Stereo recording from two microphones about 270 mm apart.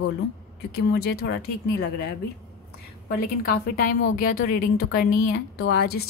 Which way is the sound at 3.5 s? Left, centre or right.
Left.